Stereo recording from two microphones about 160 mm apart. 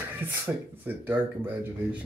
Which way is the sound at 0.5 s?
5° right (ahead or behind).